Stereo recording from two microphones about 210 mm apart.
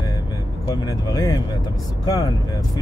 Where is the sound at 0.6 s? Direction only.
20° left (ahead or behind).